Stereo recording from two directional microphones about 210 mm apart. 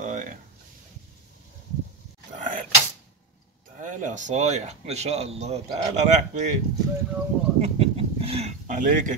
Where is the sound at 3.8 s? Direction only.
35° right (ahead or behind).